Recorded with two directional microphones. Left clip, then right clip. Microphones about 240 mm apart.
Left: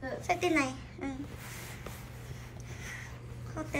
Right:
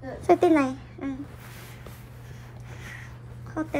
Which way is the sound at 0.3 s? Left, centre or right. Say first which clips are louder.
Right 10 dB; centre.